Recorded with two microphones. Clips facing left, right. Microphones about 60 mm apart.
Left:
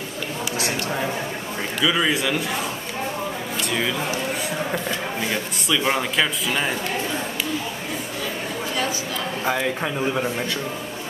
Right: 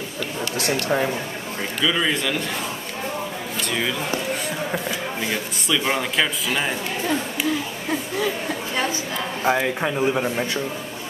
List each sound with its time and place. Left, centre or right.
1.8 s speech: centre
4.7 s speech: centre
9.4 s a man's voice: centre